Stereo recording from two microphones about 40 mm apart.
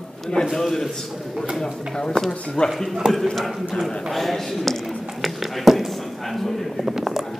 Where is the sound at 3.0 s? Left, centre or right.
Right.